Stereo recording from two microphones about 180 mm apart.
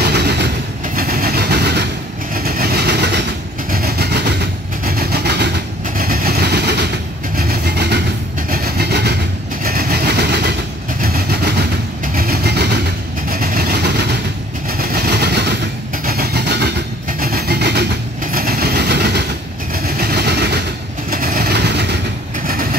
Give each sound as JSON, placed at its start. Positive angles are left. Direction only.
{"t": 0.0, "sound": "train", "side_deg": -65}
{"t": 0.9, "sound": "vehicle", "side_deg": -55}
{"t": 2.3, "sound": "vehicle", "side_deg": -55}
{"t": 3.7, "sound": "train", "side_deg": -60}
{"t": 5.1, "sound": "vehicle", "side_deg": -65}
{"t": 5.9, "sound": "vehicle", "side_deg": -55}
{"t": 8.5, "sound": "train", "side_deg": -60}
{"t": 9.6, "sound": "vehicle", "side_deg": -55}
{"t": 12.2, "sound": "vehicle", "side_deg": -60}
{"t": 13.3, "sound": "vehicle", "side_deg": -55}
{"t": 18.3, "sound": "vehicle", "side_deg": -55}
{"t": 21.1, "sound": "vehicle", "side_deg": -55}
{"t": 22.5, "sound": "vehicle", "side_deg": -55}